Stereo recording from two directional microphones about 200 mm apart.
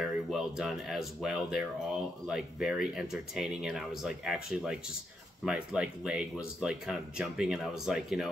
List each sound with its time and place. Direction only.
0.0 s speech: centre (ahead or behind)